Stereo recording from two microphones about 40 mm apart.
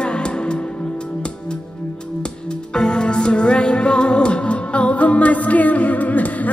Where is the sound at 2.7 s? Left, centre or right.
Left.